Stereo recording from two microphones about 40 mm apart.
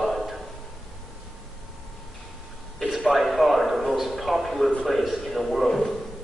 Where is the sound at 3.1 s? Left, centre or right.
Centre.